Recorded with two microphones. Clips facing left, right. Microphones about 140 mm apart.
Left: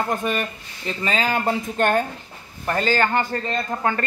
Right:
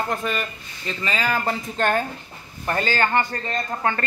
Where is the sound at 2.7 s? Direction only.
35° left (ahead or behind).